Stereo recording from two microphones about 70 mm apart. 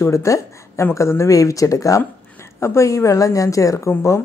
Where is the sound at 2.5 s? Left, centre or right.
Left.